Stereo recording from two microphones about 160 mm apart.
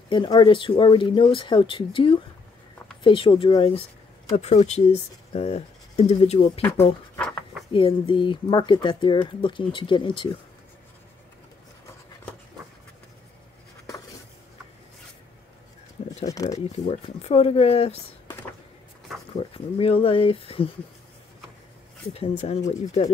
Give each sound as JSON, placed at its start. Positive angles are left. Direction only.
{"t": 0.1, "sound": "speech", "side_deg": 30}
{"t": 4.4, "sound": "speech", "side_deg": 45}
{"t": 7.2, "sound": "a sound", "side_deg": 5}
{"t": 7.7, "sound": "speech", "side_deg": 30}
{"t": 16.3, "sound": "a sound", "side_deg": 20}
{"t": 16.5, "sound": "speech", "side_deg": 45}
{"t": 19.3, "sound": "speech", "side_deg": 35}
{"t": 22.1, "sound": "speech", "side_deg": 40}